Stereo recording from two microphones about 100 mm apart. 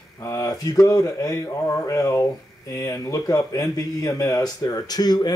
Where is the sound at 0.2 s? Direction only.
35° left (ahead or behind).